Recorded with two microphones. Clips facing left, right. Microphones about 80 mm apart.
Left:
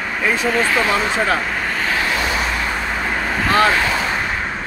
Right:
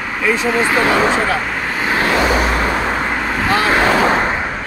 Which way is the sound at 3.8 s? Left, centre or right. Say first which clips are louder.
Right 7 dB; right.